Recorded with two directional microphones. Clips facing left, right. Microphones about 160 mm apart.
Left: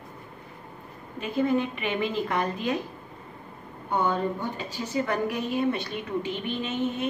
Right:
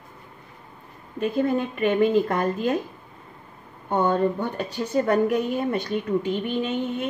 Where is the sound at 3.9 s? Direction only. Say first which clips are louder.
Right 5 dB; 50° right (ahead or behind).